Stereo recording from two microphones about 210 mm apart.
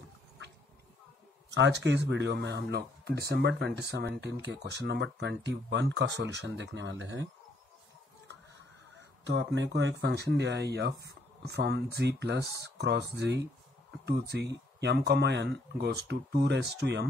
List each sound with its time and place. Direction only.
1.5 s speech: 55° right (ahead or behind)
9.2 s speech: 55° right (ahead or behind)